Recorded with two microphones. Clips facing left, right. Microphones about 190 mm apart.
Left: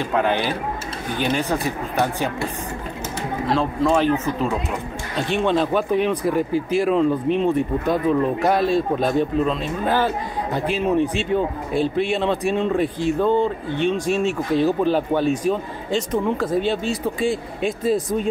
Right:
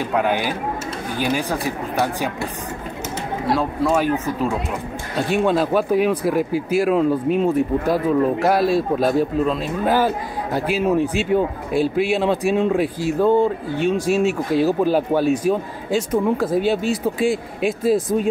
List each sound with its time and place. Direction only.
0.0 s speech: 10° right (ahead or behind)
3.4 s speech: 10° right (ahead or behind)